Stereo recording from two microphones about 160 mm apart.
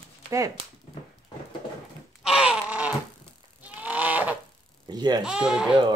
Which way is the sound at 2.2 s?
5° right (ahead or behind).